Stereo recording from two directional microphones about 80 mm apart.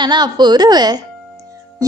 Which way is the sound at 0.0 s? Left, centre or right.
Right.